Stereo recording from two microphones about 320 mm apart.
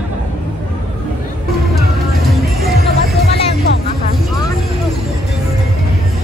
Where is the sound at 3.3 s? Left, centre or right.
Centre.